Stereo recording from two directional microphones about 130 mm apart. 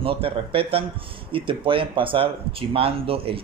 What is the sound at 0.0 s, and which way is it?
Speech, 45° right (ahead or behind).